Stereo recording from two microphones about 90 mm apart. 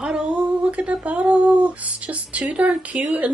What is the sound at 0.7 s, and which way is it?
Speech, 15° right (ahead or behind).